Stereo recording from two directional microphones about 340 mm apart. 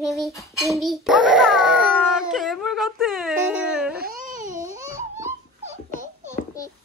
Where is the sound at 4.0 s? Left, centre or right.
Right.